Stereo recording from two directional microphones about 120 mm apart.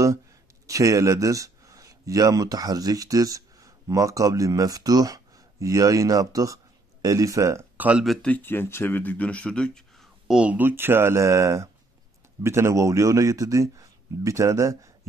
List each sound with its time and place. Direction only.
0.7 s speech: 25° right (ahead or behind)
8.0 s speech: centre (ahead or behind)
8.3 s a man's voice: 15° left (ahead or behind); by 14.9 s 25° right (ahead or behind)